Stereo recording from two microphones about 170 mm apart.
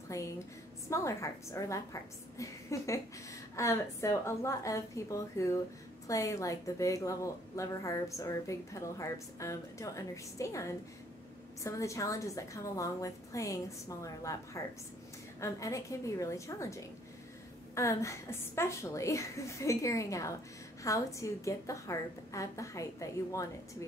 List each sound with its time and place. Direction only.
0.1 s a woman's voice: 20° left (ahead or behind)